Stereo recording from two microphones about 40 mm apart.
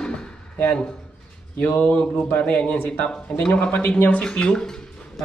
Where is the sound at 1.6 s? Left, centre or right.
Left.